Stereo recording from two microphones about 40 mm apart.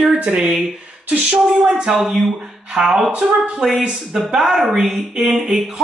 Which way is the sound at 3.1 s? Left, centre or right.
Right.